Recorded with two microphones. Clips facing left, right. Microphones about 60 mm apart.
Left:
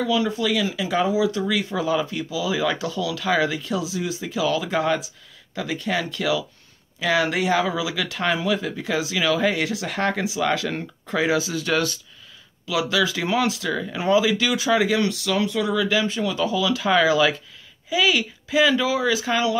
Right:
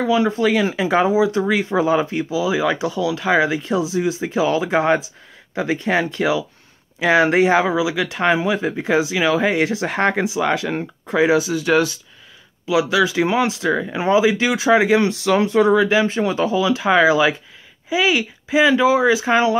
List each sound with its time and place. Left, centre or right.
0.0 s speech: right
7.7 s speech: centre
10.5 s speech: centre; by 19.6 s right